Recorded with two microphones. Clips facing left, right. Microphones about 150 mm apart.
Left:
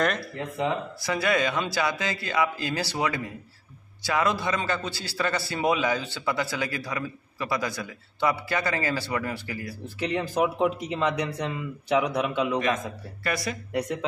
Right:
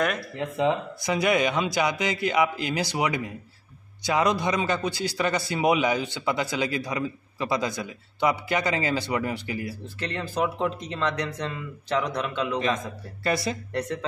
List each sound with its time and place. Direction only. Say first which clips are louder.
0.4 s a man's voice: right 6 dB; 20° right (ahead or behind)
9.9 s speech: left 3 dB; 10° left (ahead or behind)
13.2 s speech: right 3 dB; 25° right (ahead or behind)